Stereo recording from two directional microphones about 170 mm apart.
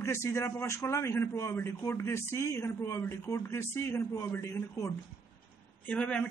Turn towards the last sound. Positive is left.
turn(degrees=5)  # may be behind; listen again after turning